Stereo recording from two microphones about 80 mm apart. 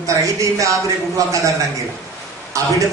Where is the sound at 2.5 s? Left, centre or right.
Right.